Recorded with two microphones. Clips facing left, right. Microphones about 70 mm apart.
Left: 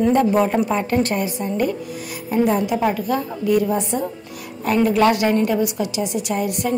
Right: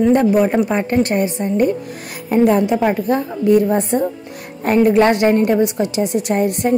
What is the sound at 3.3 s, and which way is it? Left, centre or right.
A woman's voice, right.